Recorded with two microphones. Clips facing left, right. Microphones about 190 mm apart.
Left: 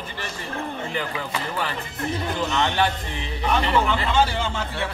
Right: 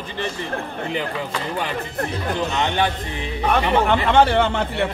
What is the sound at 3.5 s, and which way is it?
A man's voice, 60° right (ahead or behind).